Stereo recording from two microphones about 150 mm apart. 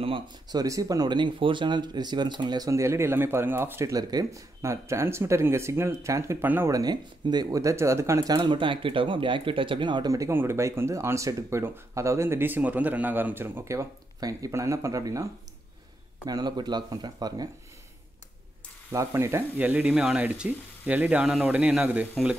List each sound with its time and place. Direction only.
0.0 s speech: 30° right (ahead or behind)
16.3 s speech: 25° right (ahead or behind)
18.9 s speech: 20° right (ahead or behind)